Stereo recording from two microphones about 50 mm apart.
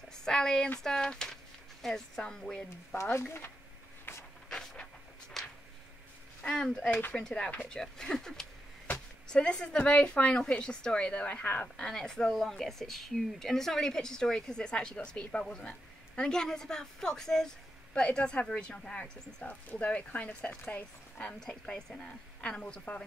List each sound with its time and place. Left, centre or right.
0.1 s a sound: centre
0.8 s speech: centre
3.3 s speech: left
4.1 s a sound: left
4.5 s vehicle: centre
6.4 s speech: centre
11.8 s speech: centre
16.2 s speech: centre; by 21.3 s left
21.4 s speech: centre